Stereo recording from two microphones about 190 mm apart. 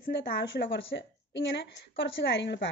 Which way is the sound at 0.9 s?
70° left (ahead or behind).